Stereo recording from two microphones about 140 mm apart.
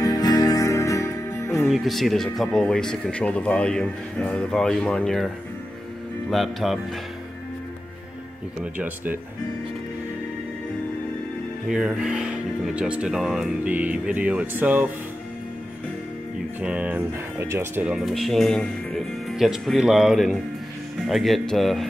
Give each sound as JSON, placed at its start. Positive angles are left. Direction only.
{"t": 0.0, "sound": "music", "side_deg": 25}
{"t": 1.7, "sound": "speech", "side_deg": 0}
{"t": 6.3, "sound": "speech", "side_deg": 0}
{"t": 8.7, "sound": "speech", "side_deg": -15}
{"t": 11.6, "sound": "speech", "side_deg": -5}
{"t": 16.6, "sound": "speech", "side_deg": -10}
{"t": 17.8, "sound": "speech", "side_deg": -5}